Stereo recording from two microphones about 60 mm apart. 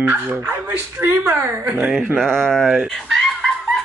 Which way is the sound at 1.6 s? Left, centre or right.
Right.